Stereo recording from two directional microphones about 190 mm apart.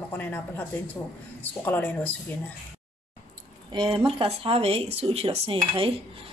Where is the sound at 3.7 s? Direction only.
25° right (ahead or behind).